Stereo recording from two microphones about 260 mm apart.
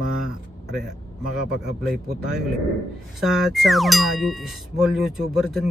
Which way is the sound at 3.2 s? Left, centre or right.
Centre.